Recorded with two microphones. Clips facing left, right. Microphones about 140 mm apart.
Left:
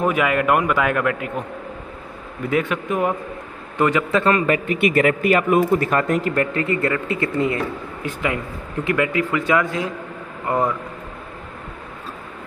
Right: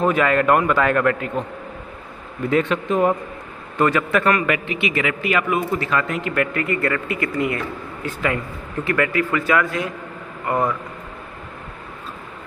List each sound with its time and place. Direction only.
0.0 s a man's voice: 10° left (ahead or behind)
2.5 s a man's voice: 10° left (ahead or behind); by 4.6 s 25° left (ahead or behind)
4.6 s a man's voice: 45° left (ahead or behind); by 10.7 s 20° left (ahead or behind)